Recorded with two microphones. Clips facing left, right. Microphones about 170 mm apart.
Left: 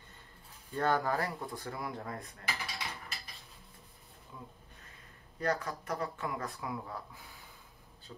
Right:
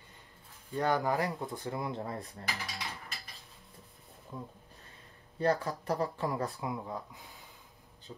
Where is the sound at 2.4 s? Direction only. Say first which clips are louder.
Even; centre (ahead or behind).